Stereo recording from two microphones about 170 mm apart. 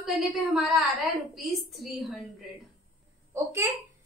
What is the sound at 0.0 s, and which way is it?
A woman's voice, centre (ahead or behind).